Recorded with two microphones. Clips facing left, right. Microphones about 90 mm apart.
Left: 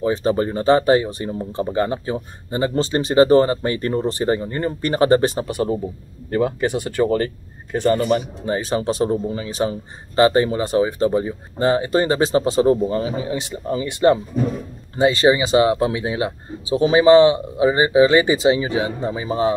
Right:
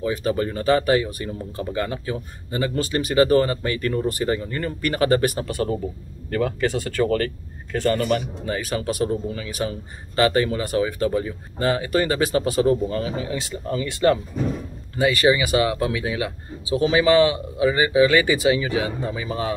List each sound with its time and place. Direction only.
0.0 s speech: 30° left (ahead or behind)